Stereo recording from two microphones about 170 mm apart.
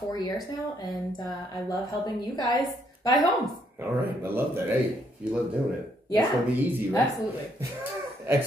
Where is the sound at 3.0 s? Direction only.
20° left (ahead or behind).